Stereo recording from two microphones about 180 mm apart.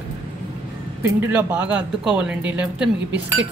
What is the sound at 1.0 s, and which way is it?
A woman's voice, 10° right (ahead or behind).